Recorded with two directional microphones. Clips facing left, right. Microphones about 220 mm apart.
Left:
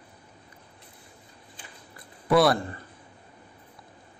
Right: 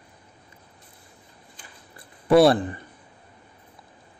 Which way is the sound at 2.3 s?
25° right (ahead or behind).